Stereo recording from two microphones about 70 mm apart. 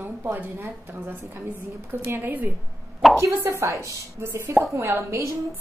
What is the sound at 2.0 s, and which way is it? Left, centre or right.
Speech, right.